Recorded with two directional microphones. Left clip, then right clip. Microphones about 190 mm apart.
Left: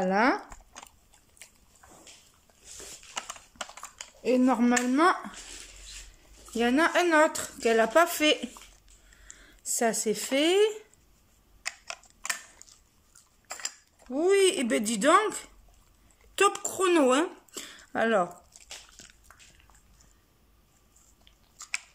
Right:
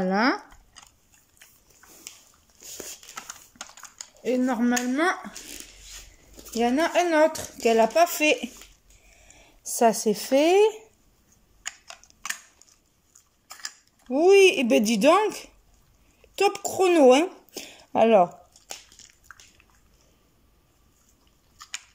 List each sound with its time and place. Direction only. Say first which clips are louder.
0.0 s speech: right 1 dB; centre (ahead or behind)
3.2 s typing: left 6 dB; 15° left (ahead or behind)
6.6 s speech: right 2 dB; centre (ahead or behind)
9.7 s speech: right 6 dB; centre (ahead or behind)
11.6 s typing: left 1 dB; 15° left (ahead or behind)
14.1 s speech: right 7 dB; centre (ahead or behind)
14.5 s speech: right 7 dB; 30° right (ahead or behind)
15.0 s speech: right 2 dB; centre (ahead or behind)
16.6 s speech: right 7 dB; centre (ahead or behind)
21.6 s biting: left 5 dB; 20° left (ahead or behind)